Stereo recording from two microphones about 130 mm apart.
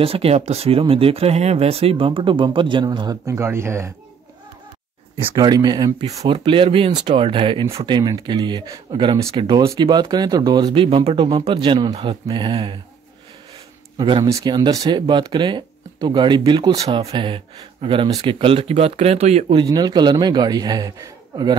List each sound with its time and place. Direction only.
0.0 s speech: 50° right (ahead or behind)
3.3 s speech: 20° right (ahead or behind)
5.3 s speech: 30° right (ahead or behind)
6.2 s speech: 40° right (ahead or behind)
9.6 s speech: 30° right (ahead or behind)
13.9 s speech: 35° right (ahead or behind); by 19.4 s 55° right (ahead or behind)
19.5 s speech: 35° right (ahead or behind)